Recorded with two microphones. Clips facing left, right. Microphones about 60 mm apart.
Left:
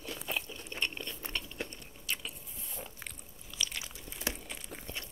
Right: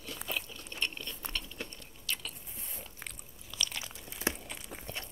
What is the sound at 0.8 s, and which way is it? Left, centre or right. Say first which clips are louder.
Biting: even; centre.